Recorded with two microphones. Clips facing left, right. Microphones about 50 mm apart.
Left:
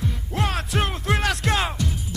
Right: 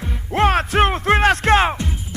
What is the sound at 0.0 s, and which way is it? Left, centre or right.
Music, right.